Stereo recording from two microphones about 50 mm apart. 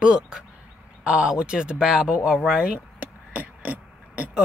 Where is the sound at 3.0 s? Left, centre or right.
Right.